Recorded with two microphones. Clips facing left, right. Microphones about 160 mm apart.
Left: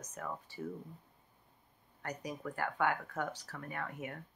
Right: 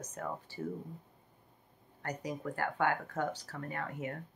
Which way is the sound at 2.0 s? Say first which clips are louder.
Right 3 dB; 30° right (ahead or behind).